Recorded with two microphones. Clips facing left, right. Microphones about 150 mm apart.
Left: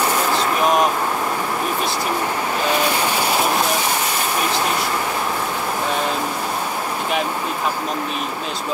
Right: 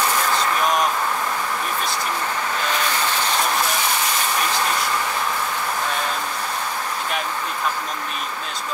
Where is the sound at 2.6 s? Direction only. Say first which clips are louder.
Left 6 dB; 10° left (ahead or behind).